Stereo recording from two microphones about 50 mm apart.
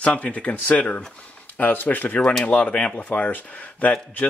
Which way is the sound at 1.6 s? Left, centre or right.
Left.